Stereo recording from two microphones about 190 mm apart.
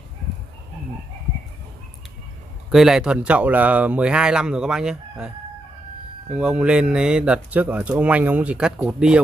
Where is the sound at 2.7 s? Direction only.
Centre (ahead or behind).